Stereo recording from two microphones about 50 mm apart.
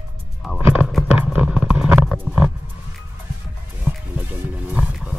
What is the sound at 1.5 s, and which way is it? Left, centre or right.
Vehicle, centre.